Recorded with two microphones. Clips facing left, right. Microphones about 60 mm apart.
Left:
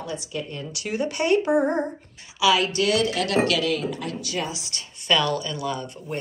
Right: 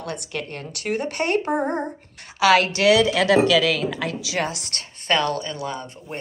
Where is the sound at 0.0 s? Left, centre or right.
Right.